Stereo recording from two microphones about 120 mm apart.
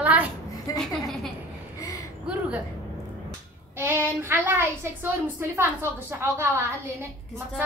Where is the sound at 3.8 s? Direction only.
15° right (ahead or behind).